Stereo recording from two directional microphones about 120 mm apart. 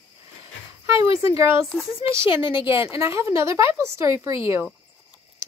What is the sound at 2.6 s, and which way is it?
Speech, 20° right (ahead or behind).